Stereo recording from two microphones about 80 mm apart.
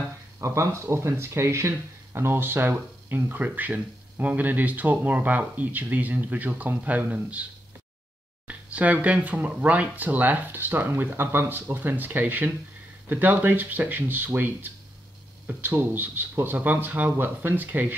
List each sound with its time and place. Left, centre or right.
0.4 s speech: right; by 7.4 s centre
8.5 s speech: centre
15.9 s speech: right